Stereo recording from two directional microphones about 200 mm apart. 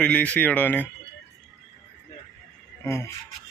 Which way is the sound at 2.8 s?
10° left (ahead or behind).